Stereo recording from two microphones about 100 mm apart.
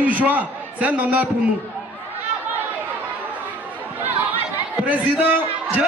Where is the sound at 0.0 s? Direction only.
15° right (ahead or behind).